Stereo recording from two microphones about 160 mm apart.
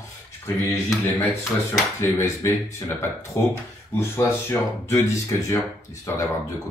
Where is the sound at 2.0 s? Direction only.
15° left (ahead or behind).